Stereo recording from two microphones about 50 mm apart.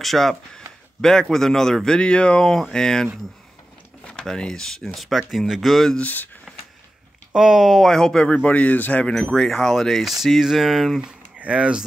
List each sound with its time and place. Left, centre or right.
0.0 s speech: centre
2.0 s speech: centre
4.0 s a sound: centre
4.3 s speech: centre
5.9 s speech: left
7.3 s speech: centre
7.8 s speech: centre
8.3 s a man's voice: left
9.0 s speech: centre
11.0 s speech: right